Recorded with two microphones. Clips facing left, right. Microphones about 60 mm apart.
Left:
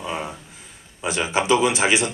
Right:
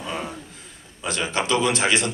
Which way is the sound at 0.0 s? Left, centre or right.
Centre.